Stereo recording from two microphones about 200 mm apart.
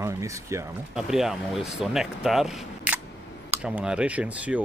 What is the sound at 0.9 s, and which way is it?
Speech, centre (ahead or behind).